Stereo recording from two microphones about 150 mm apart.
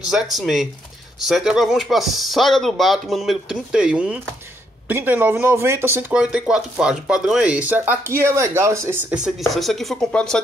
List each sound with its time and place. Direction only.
0.1 s speech: centre (ahead or behind); by 9.0 s 20° right (ahead or behind)
9.1 s speech: 5° right (ahead or behind)